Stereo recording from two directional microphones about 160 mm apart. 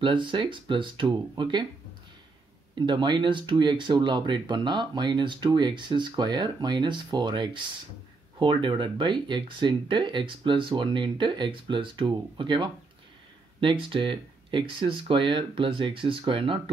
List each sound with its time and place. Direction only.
0.0 s speech: 30° right (ahead or behind)
2.7 s speech: 30° right (ahead or behind)